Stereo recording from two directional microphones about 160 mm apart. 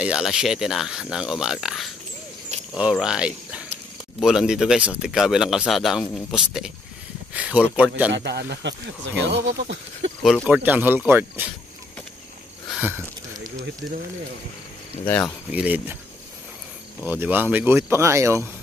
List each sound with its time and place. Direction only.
0.0 s speech: 5° right (ahead or behind)
8.1 s speech: 90° right
10.2 s speech: centre (ahead or behind)
10.6 s speech: 10° right (ahead or behind)
15.0 s speech: 10° left (ahead or behind)
15.5 s speech: 10° right (ahead or behind)
17.0 s speech: 10° right (ahead or behind)